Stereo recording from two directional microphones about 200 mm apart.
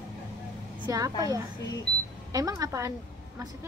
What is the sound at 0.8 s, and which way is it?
Speech, 20° right (ahead or behind).